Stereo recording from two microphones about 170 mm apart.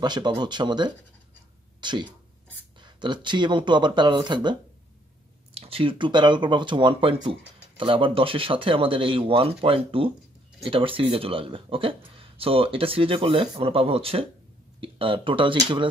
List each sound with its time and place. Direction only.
0.0 s speech: 25° right (ahead or behind)